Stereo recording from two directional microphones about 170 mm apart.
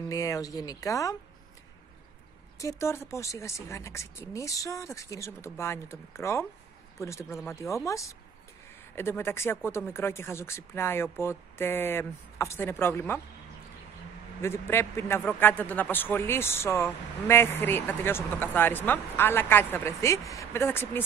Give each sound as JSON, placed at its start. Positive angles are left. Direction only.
{"t": 0.1, "sound": "speech", "side_deg": 20}
{"t": 2.6, "sound": "speech", "side_deg": 15}
{"t": 14.4, "sound": "speech", "side_deg": 15}